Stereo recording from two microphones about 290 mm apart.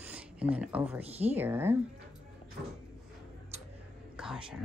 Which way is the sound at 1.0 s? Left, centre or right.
Right.